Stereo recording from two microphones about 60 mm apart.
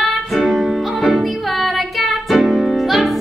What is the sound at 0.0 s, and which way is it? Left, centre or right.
Music, centre.